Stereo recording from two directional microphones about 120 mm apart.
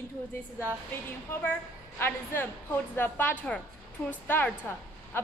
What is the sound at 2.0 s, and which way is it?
A woman's voice, 20° left (ahead or behind).